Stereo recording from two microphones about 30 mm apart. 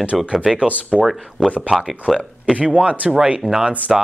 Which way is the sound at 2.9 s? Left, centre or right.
Right.